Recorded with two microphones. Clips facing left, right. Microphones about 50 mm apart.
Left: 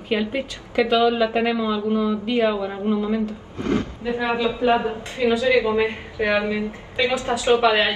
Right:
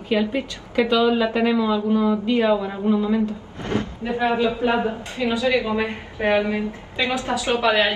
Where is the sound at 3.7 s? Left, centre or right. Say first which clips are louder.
Left 2 dB; right.